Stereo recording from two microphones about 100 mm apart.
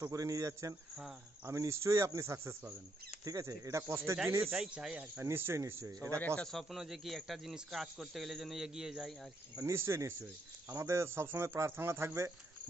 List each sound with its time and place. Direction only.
0.0 s a man's voice: 35° right (ahead or behind)
4.6 s speech: 10° right (ahead or behind)
5.2 s speech: 25° right (ahead or behind)
6.1 s speech: 10° left (ahead or behind); by 9.1 s 5° right (ahead or behind)
9.6 s speech: 25° right (ahead or behind)